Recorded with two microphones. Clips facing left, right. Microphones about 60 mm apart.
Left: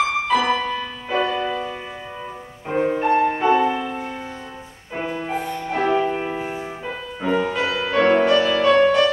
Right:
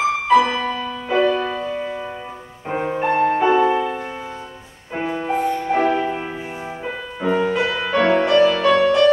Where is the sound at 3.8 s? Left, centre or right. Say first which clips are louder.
Right 4 dB; centre.